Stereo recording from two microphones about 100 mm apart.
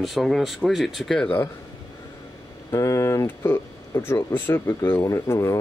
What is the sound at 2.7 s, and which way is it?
Speech, 30° left (ahead or behind).